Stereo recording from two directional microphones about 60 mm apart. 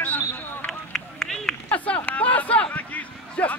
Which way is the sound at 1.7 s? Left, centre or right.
Left.